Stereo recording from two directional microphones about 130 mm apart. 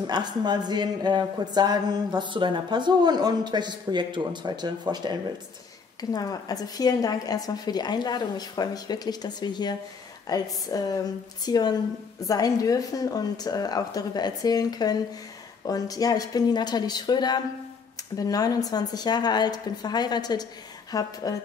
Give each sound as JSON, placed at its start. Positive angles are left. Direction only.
{"t": 0.0, "sound": "speech", "side_deg": -35}
{"t": 5.9, "sound": "a woman's voice", "side_deg": 30}